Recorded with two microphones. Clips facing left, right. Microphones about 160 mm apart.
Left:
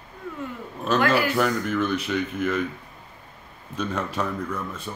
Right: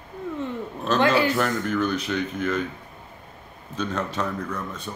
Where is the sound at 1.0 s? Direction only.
25° right (ahead or behind).